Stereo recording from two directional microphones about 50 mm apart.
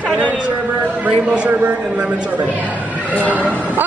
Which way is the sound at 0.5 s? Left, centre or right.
Right.